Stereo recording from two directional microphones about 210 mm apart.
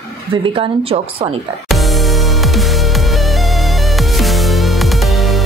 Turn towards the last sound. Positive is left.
turn(degrees=0)  # may be behind; listen again after turning